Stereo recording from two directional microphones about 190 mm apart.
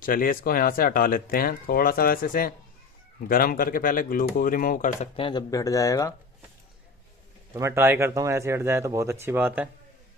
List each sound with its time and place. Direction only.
0.0 s speech: 50° left (ahead or behind)
5.1 s speech: 25° left (ahead or behind)
7.5 s speech: 15° right (ahead or behind)